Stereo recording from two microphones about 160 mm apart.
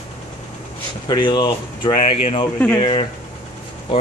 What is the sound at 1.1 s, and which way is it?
Speech, 30° left (ahead or behind).